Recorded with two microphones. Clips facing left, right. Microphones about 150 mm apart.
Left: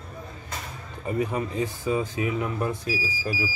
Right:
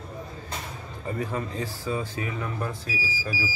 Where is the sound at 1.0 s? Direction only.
20° left (ahead or behind).